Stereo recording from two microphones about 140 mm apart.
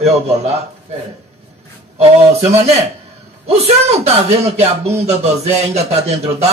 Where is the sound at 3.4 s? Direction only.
50° right (ahead or behind).